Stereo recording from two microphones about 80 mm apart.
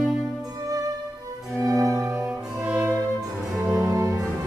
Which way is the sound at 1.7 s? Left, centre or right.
Right.